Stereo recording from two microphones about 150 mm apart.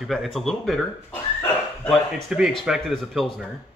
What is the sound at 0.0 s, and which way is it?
Speech, centre (ahead or behind).